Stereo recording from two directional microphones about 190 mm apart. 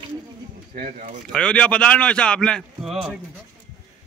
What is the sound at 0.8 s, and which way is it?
Speech, 45° right (ahead or behind).